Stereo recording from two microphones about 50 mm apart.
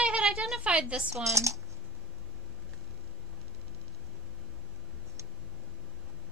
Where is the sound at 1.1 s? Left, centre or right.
Right.